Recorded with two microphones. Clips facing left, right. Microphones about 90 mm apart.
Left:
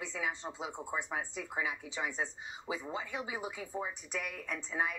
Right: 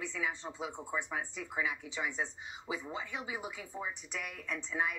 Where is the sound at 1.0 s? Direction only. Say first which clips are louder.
Left 1 dB; 30° left (ahead or behind).